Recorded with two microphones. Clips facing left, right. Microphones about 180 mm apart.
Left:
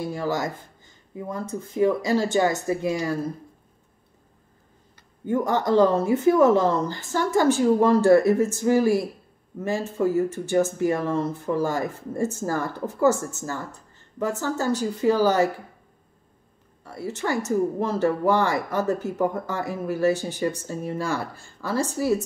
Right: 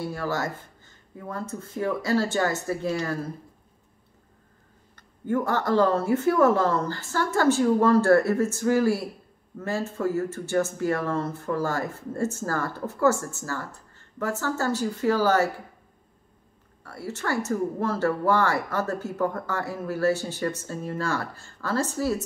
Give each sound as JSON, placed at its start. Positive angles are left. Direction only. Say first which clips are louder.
{"t": 0.0, "sound": "speech", "louder": "left 2 dB", "side_deg": 15}
{"t": 4.9, "sound": "speech", "louder": "left 1 dB", "side_deg": 15}
{"t": 16.8, "sound": "speech", "louder": "left 3 dB", "side_deg": 15}